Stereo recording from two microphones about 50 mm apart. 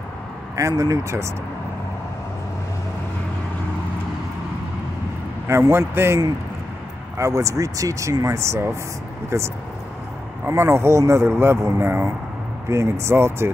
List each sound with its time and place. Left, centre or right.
0.6 s speech: right
5.5 s speech: right
7.2 s speech: right
10.4 s speech: right
12.6 s speech: right